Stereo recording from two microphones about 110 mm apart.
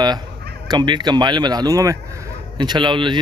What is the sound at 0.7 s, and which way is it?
Speech, 45° right (ahead or behind).